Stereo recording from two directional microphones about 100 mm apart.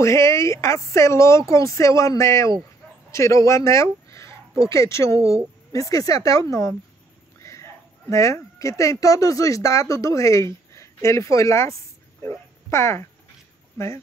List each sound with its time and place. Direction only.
0.0 s speech: 30° left (ahead or behind)